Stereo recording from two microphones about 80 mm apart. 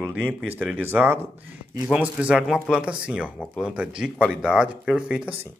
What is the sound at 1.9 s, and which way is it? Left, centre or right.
Speech, centre.